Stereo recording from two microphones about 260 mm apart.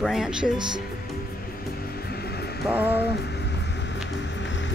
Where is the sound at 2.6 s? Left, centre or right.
Centre.